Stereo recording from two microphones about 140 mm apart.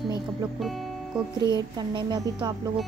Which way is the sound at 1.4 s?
30° right (ahead or behind).